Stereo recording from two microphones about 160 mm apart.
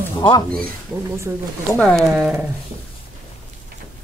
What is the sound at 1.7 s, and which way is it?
Speech, 5° left (ahead or behind).